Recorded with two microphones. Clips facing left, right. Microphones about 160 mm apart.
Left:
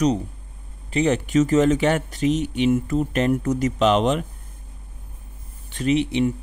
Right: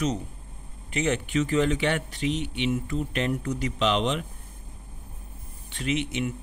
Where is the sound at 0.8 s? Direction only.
35° left (ahead or behind).